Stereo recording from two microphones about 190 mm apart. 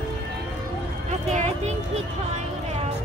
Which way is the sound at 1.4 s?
35° right (ahead or behind).